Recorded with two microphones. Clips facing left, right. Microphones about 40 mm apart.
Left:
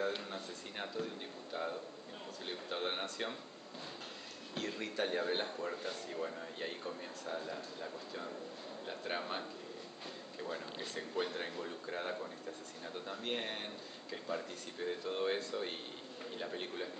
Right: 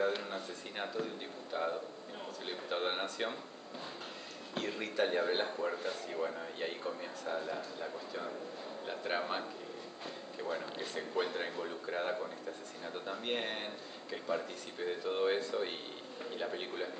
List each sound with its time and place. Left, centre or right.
0.0 s a man's voice: centre
4.6 s a man's voice: centre